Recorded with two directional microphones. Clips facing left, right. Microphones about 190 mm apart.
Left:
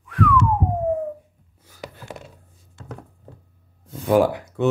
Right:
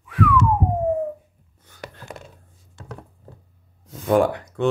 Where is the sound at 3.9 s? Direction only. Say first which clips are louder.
Left 1 dB; centre (ahead or behind).